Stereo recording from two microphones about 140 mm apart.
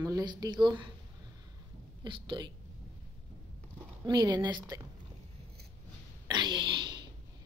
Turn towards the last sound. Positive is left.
turn(degrees=-35)  # may be behind; listen again after turning